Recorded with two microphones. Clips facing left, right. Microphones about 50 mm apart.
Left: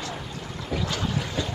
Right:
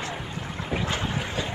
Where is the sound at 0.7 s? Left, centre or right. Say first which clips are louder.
Even; right.